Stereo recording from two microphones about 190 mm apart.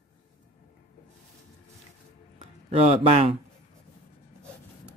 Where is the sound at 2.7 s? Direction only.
35° right (ahead or behind).